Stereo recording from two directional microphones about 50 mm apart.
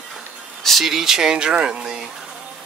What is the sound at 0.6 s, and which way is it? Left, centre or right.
Speech, centre.